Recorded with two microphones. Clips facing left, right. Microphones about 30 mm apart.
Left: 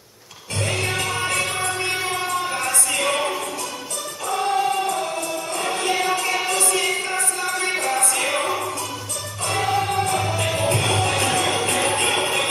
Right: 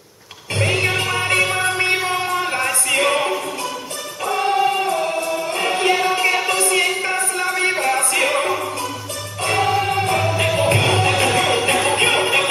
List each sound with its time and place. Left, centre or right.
0.6 s music: right